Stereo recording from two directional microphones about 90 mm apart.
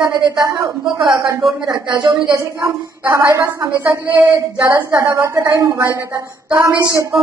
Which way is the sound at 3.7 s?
25° right (ahead or behind).